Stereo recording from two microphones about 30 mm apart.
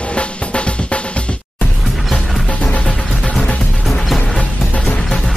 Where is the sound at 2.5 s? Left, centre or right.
Left.